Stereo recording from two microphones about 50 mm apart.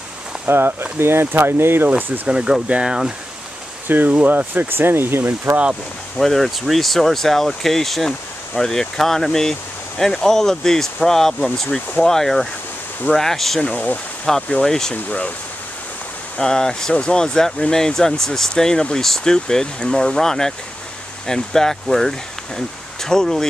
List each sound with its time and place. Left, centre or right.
0.5 s speech: right
1.9 s speech: right
2.2 s speech: centre
3.9 s speech: right
6.1 s speech: centre
13.6 s speech: left
14.2 s speech: centre
15.0 s speech: left
16.3 s speech: centre